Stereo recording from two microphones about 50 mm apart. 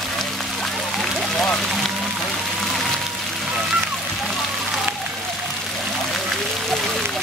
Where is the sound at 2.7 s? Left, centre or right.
Centre.